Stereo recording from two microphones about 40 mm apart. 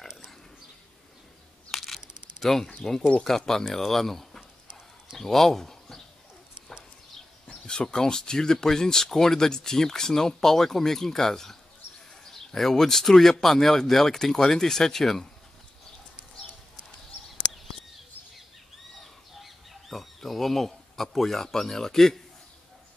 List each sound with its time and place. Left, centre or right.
1.7 s camera: centre
2.4 s speech: centre
4.4 s a sound: centre
5.1 s a sound: centre
7.4 s speech: left
18.9 s chicken: centre